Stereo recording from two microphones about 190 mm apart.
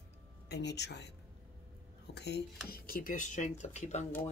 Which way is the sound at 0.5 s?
65° left (ahead or behind).